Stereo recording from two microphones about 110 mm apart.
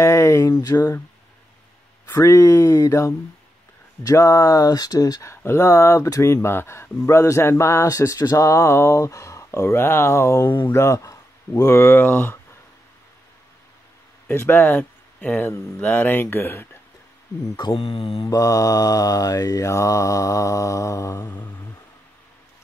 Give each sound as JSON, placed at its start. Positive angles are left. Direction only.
{"t": 0.0, "sound": "a sound", "side_deg": 25}
{"t": 2.0, "sound": "speech", "side_deg": 30}
{"t": 14.3, "sound": "speech", "side_deg": 20}
{"t": 17.7, "sound": "mantra", "side_deg": 60}
{"t": 18.2, "sound": "mantra", "side_deg": 30}
{"t": 21.3, "sound": "a sound", "side_deg": 15}